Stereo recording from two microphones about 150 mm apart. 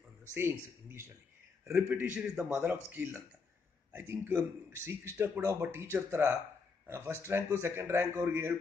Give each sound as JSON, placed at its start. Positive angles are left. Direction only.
{"t": 0.3, "sound": "speech", "side_deg": -15}